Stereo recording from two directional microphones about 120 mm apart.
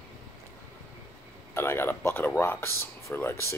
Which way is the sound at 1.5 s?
20° left (ahead or behind).